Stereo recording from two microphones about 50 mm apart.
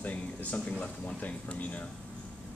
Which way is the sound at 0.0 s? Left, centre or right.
Left.